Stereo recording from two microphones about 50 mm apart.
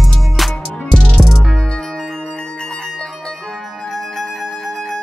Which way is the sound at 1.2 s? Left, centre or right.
Centre.